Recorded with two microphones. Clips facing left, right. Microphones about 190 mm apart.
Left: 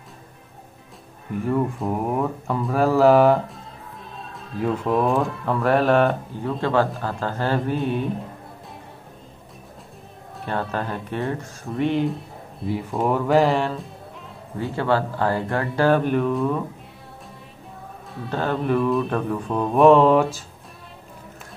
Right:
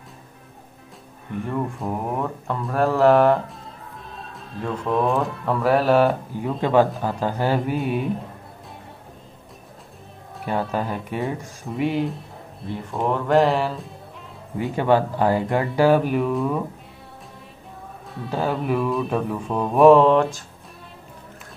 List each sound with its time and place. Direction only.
1.4 s mantra: centre (ahead or behind)
6.6 s speech: 15° right (ahead or behind)
10.4 s speech: 10° right (ahead or behind)
12.6 s mantra: 5° left (ahead or behind)
14.6 s speech: 15° right (ahead or behind)
18.1 s mantra: 5° right (ahead or behind)